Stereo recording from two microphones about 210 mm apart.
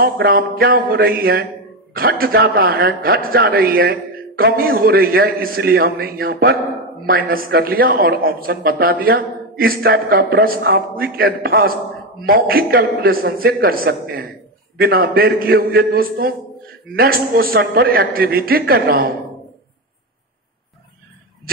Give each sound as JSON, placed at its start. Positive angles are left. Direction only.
{"t": 0.0, "sound": "a man's voice", "side_deg": -45}